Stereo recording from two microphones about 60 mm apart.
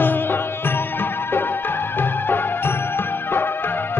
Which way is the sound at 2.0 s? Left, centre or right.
Left.